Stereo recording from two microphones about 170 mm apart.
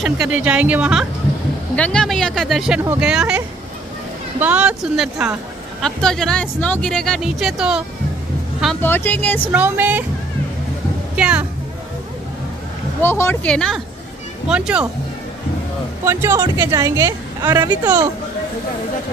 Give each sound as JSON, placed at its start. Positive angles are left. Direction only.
{"t": 0.0, "sound": "a woman's voice", "side_deg": -5}
{"t": 1.8, "sound": "a woman's voice", "side_deg": 5}
{"t": 8.8, "sound": "speech", "side_deg": 10}
{"t": 9.5, "sound": "a woman's voice", "side_deg": -10}
{"t": 11.1, "sound": "speech", "side_deg": -5}
{"t": 13.0, "sound": "speech", "side_deg": 15}
{"t": 16.1, "sound": "speech", "side_deg": -15}